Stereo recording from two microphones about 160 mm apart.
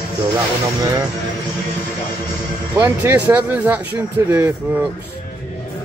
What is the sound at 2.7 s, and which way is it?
Speech, 10° right (ahead or behind).